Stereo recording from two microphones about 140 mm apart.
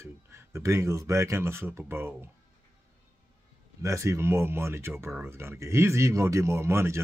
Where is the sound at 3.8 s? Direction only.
20° right (ahead or behind).